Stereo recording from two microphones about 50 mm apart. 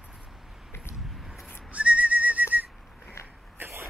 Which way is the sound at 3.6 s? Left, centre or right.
Right.